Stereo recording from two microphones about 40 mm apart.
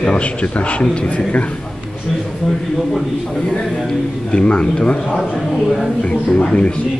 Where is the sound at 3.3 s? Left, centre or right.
Left.